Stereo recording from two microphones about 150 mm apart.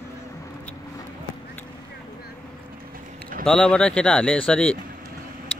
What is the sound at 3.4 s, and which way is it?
A man's voice, 5° left (ahead or behind).